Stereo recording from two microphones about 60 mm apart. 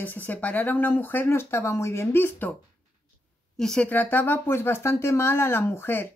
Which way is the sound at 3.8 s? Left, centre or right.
Left.